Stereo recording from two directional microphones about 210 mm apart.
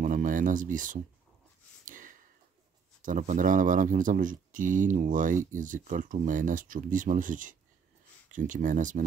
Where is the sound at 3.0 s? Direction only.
35° right (ahead or behind).